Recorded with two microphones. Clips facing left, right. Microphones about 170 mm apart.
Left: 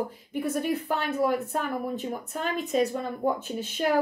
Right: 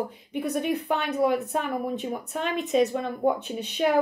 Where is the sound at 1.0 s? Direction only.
20° right (ahead or behind).